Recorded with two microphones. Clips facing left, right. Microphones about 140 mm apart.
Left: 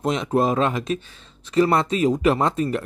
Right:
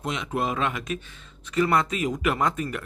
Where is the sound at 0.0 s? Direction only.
35° left (ahead or behind).